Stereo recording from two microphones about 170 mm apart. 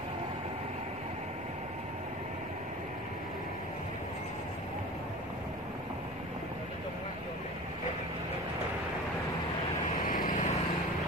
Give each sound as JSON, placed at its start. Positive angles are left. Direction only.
{"t": 10.0, "sound": "vehicle", "side_deg": 55}